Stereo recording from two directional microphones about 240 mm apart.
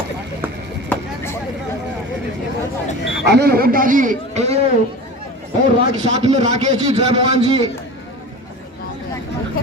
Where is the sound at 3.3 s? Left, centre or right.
Right.